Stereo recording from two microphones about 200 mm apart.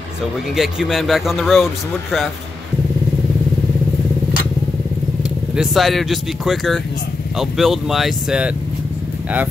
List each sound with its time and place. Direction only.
0.6 s speech: centre (ahead or behind)
5.6 s speech: centre (ahead or behind)